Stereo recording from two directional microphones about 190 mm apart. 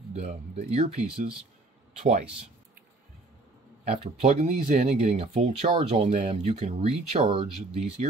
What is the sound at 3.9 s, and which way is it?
Speech, 35° right (ahead or behind).